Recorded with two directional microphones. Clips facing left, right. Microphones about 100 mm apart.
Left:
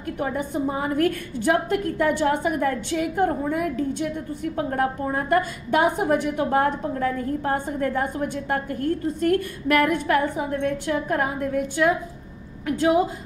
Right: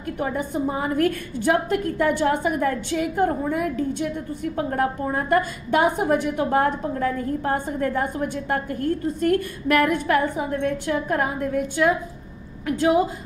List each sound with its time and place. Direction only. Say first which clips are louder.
0.2 s a woman's voice: right 1 dB; 25° right (ahead or behind)